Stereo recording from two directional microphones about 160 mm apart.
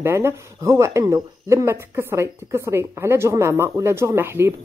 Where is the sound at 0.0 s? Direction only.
15° right (ahead or behind).